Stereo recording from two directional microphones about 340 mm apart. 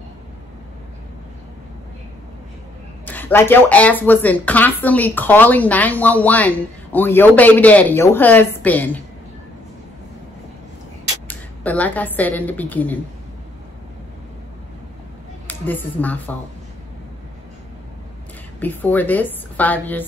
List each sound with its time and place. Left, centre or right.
3.1 s speech: centre
11.2 s a woman's voice: centre
15.4 s speech: centre
18.6 s speech: centre